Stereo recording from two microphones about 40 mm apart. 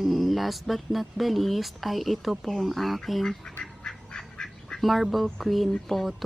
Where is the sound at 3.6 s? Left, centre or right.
Centre.